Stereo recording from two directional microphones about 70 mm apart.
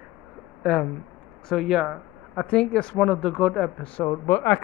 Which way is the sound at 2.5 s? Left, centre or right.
Centre.